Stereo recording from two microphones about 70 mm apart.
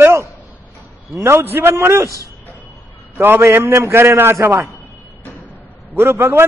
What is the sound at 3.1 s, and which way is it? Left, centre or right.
A man's voice, right.